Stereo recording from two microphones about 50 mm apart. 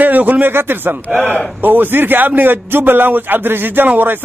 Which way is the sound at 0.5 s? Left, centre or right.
Right.